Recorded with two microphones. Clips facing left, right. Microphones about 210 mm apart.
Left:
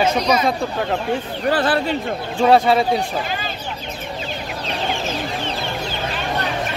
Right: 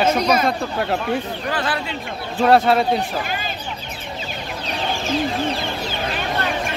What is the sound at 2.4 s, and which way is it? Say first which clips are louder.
Speech: left 1 dB; centre (ahead or behind).